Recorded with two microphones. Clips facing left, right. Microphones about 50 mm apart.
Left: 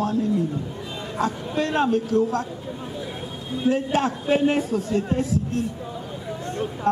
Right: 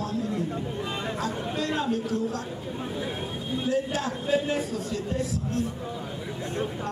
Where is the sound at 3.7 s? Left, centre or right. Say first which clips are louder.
Left 6 dB; left.